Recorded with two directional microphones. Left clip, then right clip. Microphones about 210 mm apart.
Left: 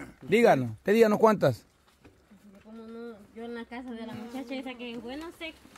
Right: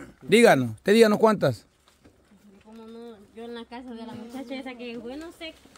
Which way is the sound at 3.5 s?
5° left (ahead or behind).